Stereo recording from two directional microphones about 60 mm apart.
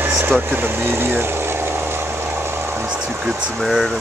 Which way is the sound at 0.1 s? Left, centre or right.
Right.